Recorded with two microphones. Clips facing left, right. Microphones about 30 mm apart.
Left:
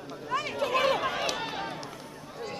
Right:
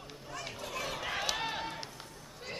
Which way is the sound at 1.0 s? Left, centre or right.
Centre.